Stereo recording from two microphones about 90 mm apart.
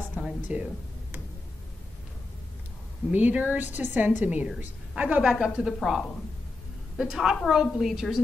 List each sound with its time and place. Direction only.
0.2 s music: 15° right (ahead or behind)
3.1 s a woman's voice: 20° right (ahead or behind)
5.2 s a woman's voice: centre (ahead or behind)